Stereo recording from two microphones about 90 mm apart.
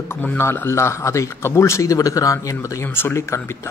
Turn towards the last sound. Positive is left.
turn(degrees=30)  # may be behind; listen again after turning